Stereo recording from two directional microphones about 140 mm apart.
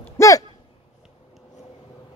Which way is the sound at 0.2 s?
20° left (ahead or behind).